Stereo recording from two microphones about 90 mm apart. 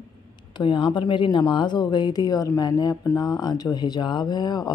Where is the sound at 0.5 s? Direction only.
60° left (ahead or behind).